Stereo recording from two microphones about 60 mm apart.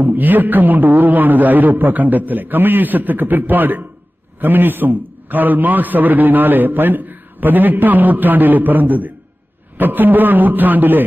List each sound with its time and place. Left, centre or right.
0.0 s a man's voice: right